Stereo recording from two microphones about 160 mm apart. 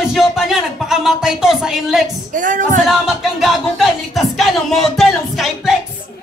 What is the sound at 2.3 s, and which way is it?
Music, 55° right (ahead or behind).